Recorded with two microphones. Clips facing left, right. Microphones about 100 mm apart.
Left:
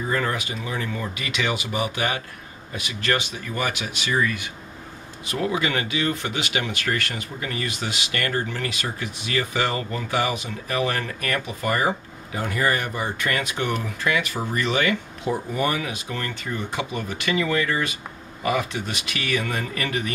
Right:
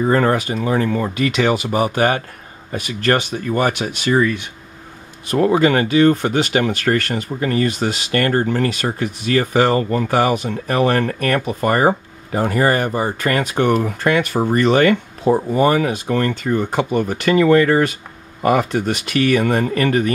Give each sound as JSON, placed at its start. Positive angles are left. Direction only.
{"t": 0.0, "sound": "speech", "side_deg": -45}
{"t": 5.3, "sound": "speech", "side_deg": -40}